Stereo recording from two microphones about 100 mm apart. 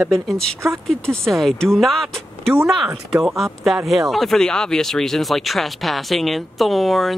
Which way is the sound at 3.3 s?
Centre (ahead or behind).